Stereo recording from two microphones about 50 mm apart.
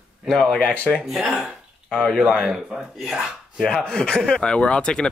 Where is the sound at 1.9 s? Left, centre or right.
Centre.